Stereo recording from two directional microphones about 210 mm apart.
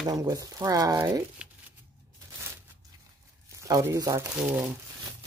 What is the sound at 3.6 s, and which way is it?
Speech, 15° right (ahead or behind).